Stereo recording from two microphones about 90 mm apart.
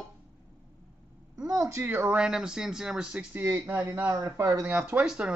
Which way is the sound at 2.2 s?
10° right (ahead or behind).